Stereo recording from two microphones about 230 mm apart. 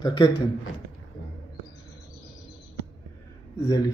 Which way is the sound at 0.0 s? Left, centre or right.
Centre.